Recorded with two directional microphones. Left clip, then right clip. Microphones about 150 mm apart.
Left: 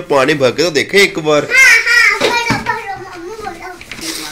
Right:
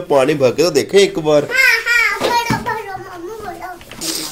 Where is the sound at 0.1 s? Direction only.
15° right (ahead or behind).